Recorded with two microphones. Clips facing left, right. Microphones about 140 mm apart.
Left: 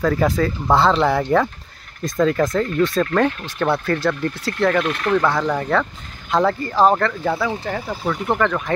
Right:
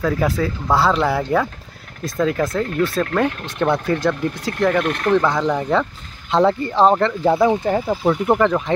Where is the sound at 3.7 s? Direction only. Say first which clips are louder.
Even; 20° right (ahead or behind).